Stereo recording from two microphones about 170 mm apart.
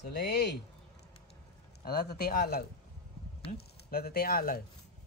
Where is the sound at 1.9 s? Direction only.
60° left (ahead or behind).